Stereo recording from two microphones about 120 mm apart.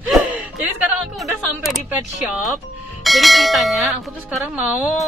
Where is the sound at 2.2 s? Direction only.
Centre (ahead or behind).